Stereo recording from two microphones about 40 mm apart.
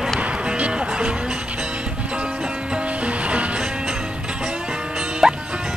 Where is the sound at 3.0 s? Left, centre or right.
Right.